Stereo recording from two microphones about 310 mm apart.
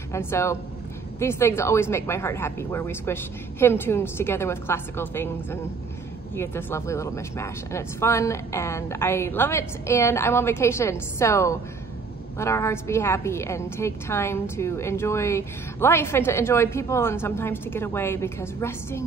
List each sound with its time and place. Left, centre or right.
0.1 s a woman's voice: centre